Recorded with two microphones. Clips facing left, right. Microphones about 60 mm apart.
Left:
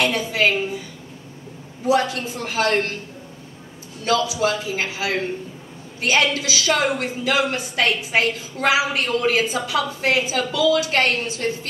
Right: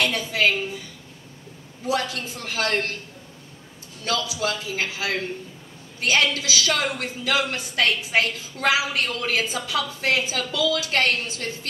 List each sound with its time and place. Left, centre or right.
0.0 s a woman's voice: left
1.9 s a woman's voice: left
4.0 s a woman's voice: left